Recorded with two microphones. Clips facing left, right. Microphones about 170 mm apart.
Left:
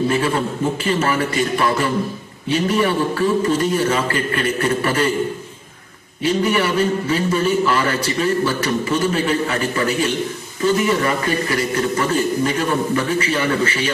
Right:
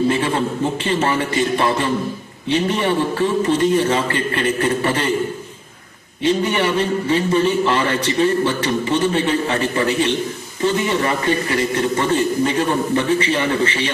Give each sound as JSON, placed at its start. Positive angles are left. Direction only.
{"t": 0.8, "sound": "a man's voice", "side_deg": -30}
{"t": 6.2, "sound": "a man's voice", "side_deg": -35}